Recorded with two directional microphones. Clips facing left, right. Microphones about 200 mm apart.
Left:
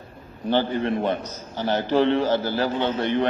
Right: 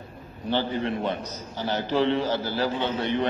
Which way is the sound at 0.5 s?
55° left (ahead or behind).